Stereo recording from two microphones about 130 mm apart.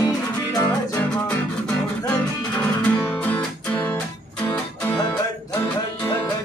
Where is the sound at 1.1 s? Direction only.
15° left (ahead or behind).